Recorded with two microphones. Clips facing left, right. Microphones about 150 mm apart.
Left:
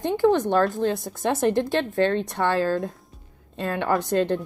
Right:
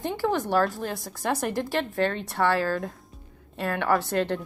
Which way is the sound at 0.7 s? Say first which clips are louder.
Left 8 dB; 20° left (ahead or behind).